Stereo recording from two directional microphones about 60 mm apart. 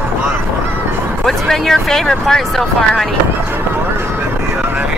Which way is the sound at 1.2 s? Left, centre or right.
Centre.